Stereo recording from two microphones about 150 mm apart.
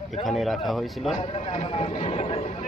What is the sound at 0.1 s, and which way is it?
Speech, centre (ahead or behind).